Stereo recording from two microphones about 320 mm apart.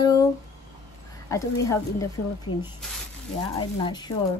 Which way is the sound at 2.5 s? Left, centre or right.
Left.